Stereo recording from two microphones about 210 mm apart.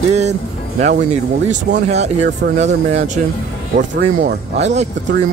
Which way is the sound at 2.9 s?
35° right (ahead or behind).